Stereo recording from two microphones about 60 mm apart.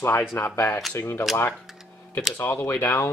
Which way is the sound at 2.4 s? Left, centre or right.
Left.